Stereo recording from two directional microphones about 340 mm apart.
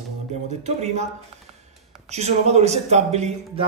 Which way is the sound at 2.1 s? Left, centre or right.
Centre.